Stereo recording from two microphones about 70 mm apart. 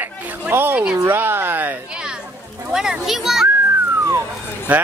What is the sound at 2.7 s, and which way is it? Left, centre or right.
Speech, centre.